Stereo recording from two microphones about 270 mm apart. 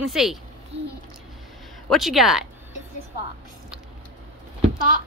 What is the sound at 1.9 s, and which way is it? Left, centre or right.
Speech, centre.